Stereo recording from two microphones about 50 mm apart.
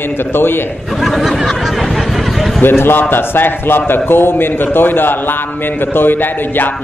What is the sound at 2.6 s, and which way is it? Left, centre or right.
A man's voice, left.